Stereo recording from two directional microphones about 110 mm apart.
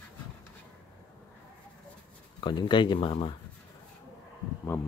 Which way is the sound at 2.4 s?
45° left (ahead or behind).